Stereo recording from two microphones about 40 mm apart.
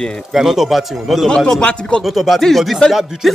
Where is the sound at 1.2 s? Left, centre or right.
Centre.